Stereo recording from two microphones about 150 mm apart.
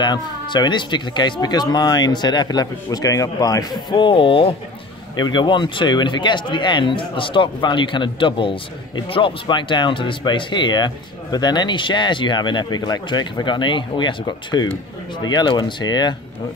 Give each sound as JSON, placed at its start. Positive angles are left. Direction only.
{"t": 0.0, "sound": "speech", "side_deg": 30}